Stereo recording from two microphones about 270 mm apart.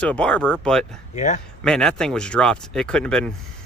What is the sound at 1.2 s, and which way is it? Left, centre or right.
Speech, left.